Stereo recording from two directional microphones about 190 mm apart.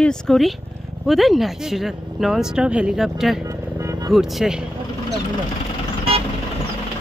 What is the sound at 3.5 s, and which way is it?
Vehicle, 15° right (ahead or behind).